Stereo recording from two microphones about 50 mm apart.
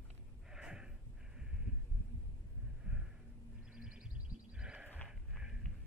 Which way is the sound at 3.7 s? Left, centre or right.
Centre.